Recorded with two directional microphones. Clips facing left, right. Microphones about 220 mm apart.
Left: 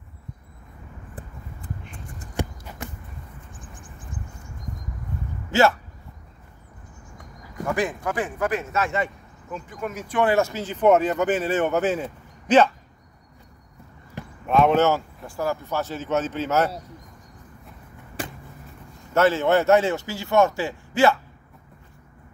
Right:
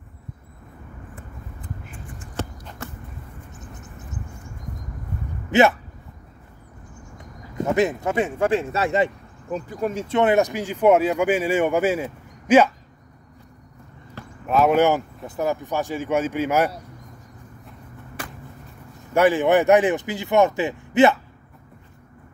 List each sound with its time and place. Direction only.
2.3 s a sound: 15° left (ahead or behind)
3.5 s a sound: 25° right (ahead or behind)
5.5 s speech: 20° right (ahead or behind)
7.5 s speech: 25° right (ahead or behind)
14.4 s speech: 5° right (ahead or behind)
19.1 s speech: 15° right (ahead or behind)